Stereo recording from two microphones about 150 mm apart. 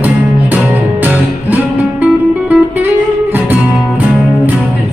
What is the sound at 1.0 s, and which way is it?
Music, 10° right (ahead or behind).